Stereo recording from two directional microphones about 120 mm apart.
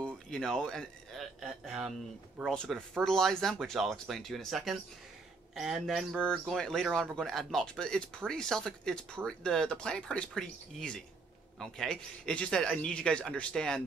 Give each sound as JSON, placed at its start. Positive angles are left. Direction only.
{"t": 0.0, "sound": "speech", "side_deg": 5}
{"t": 2.5, "sound": "a man's voice", "side_deg": 10}